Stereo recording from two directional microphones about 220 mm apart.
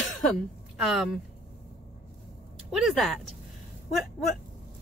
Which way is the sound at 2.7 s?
Centre (ahead or behind).